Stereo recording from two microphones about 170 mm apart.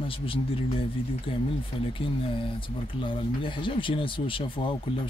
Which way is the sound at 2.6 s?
30° left (ahead or behind).